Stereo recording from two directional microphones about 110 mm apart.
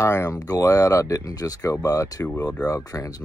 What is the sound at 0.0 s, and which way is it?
Speech, 30° left (ahead or behind).